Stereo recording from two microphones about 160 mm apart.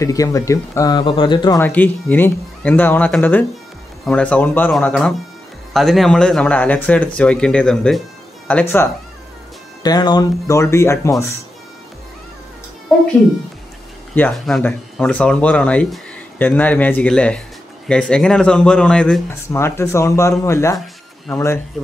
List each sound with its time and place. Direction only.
0.0 s speech: 20° left (ahead or behind)
1.6 s speech: 10° left (ahead or behind)
5.7 s speech: centre (ahead or behind)
9.8 s speech: 25° left (ahead or behind)
12.9 s speech: 5° left (ahead or behind)
14.2 s speech: 15° left (ahead or behind)
19.5 s speech: 15° left (ahead or behind)
21.8 s speech: centre (ahead or behind)